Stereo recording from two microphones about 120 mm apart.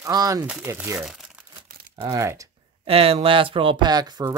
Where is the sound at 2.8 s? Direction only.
55° right (ahead or behind); by 4.3 s 35° right (ahead or behind).